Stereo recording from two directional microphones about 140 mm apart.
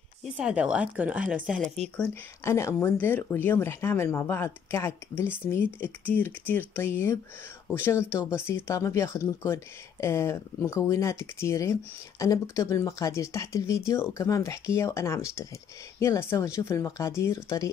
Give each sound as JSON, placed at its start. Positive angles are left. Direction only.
{"t": 0.2, "sound": "speech", "side_deg": -5}
{"t": 1.6, "sound": "speech", "side_deg": 5}
{"t": 2.4, "sound": "speech", "side_deg": 20}